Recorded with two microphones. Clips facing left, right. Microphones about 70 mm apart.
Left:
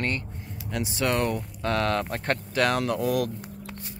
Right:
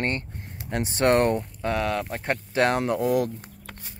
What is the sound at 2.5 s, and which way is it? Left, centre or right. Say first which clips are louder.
Speech: right 3 dB; right.